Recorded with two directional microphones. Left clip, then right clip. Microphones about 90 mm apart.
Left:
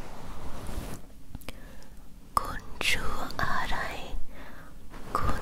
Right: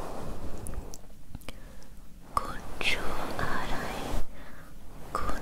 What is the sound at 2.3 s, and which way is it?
Whispering, 25° left (ahead or behind).